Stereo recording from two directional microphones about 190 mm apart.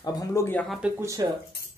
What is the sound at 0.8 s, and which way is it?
Speech, 15° right (ahead or behind).